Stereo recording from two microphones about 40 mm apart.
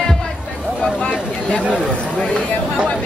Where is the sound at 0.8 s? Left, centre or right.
Left.